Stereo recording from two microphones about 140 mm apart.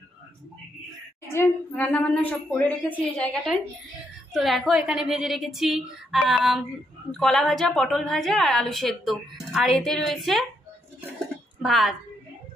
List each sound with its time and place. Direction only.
1.3 s speech: 15° left (ahead or behind)
3.1 s a woman's voice: centre (ahead or behind)
11.6 s a woman's voice: centre (ahead or behind)